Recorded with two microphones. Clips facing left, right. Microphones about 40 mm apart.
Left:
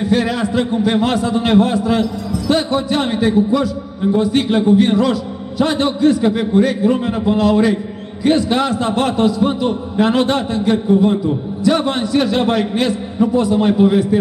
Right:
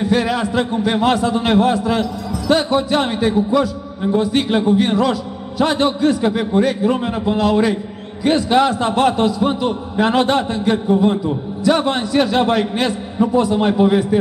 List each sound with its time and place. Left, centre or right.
0.0 s a man's voice: centre